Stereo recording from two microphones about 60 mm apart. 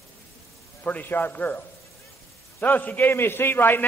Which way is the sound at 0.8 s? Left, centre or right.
Left.